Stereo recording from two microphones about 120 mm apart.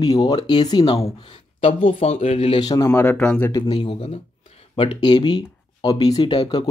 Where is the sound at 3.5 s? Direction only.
40° left (ahead or behind).